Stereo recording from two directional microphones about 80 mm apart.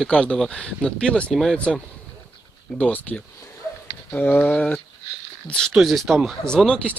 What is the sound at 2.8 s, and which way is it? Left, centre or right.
Speech, left.